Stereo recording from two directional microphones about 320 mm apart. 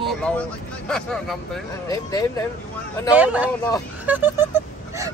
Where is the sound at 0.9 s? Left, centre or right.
Centre.